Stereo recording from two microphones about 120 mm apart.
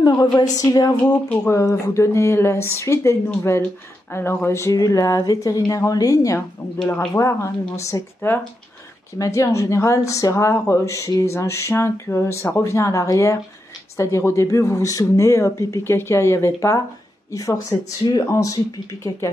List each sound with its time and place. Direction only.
0.0 s a woman's voice: 35° left (ahead or behind)